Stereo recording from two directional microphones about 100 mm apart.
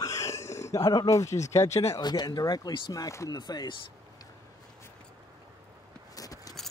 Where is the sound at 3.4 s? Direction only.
45° left (ahead or behind).